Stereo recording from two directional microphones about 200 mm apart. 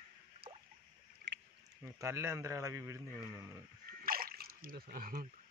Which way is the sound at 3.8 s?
45° right (ahead or behind).